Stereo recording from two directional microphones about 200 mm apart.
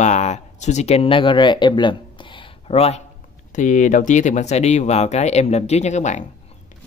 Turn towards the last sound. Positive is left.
turn(degrees=35)  # may be behind; listen again after turning